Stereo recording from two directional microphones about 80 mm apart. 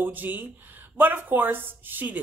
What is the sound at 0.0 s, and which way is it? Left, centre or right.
Speech, right.